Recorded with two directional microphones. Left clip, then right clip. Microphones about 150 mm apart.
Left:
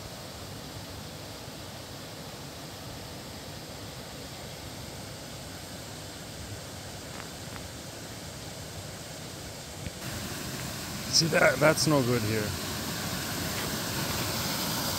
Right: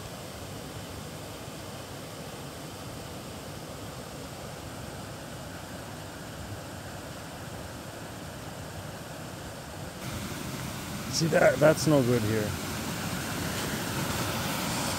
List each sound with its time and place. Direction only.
11.1 s speech: 10° right (ahead or behind)
12.8 s vehicle: 20° right (ahead or behind)